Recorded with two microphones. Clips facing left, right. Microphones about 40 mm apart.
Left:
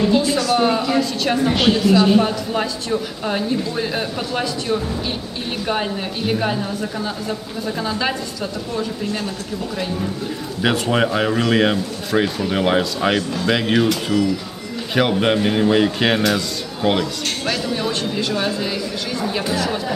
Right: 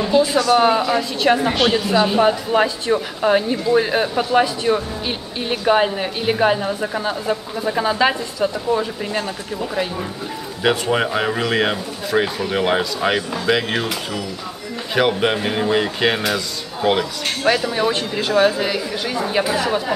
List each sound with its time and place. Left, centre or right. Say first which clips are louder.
0.0 s speech: right 1 dB; centre
1.5 s speech: left 1 dB; centre
2.1 s speech: right 3 dB; right
10.6 s speech: even; centre
15.0 s speech: left 1 dB; centre
17.5 s speech: right 6 dB; centre